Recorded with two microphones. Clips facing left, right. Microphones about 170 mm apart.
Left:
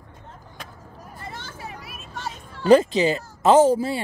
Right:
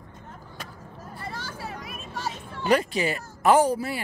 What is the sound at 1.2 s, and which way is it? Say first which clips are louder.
Vehicle: right 1 dB; 20° left (ahead or behind).